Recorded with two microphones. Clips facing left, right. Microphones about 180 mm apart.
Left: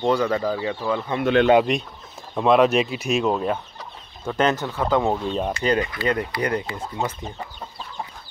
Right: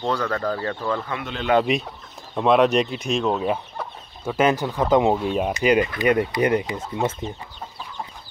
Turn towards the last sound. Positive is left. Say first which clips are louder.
# right 3 dB
turn(degrees=-20)  # may be behind; listen again after turning